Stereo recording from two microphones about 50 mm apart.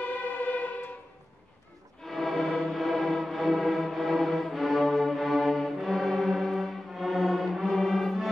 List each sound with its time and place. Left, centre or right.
0.0 s music: left
2.0 s music: centre